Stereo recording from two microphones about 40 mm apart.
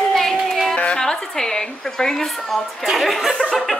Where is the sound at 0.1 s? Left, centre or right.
Centre.